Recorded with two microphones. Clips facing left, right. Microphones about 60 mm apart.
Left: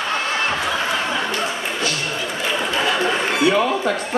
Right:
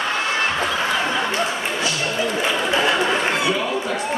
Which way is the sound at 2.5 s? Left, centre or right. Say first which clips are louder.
Even; centre.